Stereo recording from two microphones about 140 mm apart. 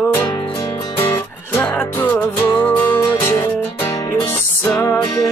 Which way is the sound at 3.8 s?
15° left (ahead or behind).